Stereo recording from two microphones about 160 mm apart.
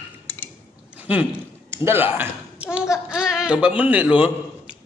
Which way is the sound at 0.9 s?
10° right (ahead or behind).